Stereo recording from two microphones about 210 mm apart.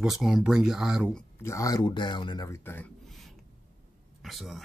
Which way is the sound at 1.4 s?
15° left (ahead or behind).